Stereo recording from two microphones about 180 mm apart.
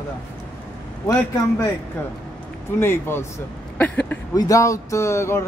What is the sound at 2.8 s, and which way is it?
Speech, 15° left (ahead or behind).